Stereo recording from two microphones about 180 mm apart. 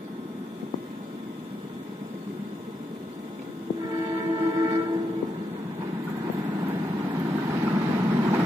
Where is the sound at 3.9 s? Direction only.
20° right (ahead or behind).